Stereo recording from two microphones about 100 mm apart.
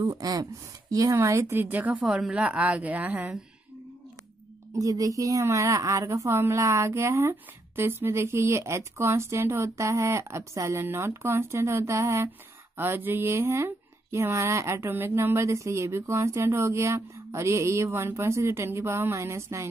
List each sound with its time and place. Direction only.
0.0 s speech: 40° right (ahead or behind); by 3.3 s 15° right (ahead or behind)
4.7 s a woman's voice: 35° right (ahead or behind)